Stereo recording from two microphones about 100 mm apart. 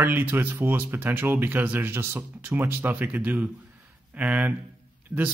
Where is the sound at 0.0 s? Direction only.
20° right (ahead or behind).